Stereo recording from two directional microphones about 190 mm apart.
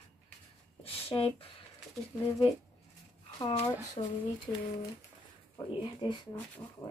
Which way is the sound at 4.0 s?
30° left (ahead or behind).